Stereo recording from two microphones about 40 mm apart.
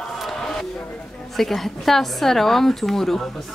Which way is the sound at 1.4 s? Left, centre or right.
Centre.